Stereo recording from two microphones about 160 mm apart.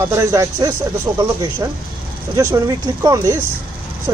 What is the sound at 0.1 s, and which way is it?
Speech, 20° right (ahead or behind).